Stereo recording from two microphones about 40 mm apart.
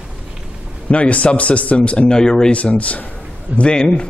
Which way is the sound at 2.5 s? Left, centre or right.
Left.